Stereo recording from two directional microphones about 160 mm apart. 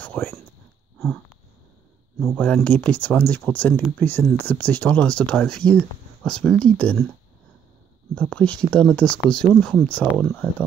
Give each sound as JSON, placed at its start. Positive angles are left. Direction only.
{"t": 0.0, "sound": "a sound", "side_deg": 10}
{"t": 0.9, "sound": "sniff", "side_deg": 15}
{"t": 2.3, "sound": "speech", "side_deg": 10}
{"t": 8.1, "sound": "speech", "side_deg": 10}